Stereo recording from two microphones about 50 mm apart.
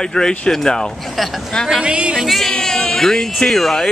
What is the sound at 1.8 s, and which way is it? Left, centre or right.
Music, centre.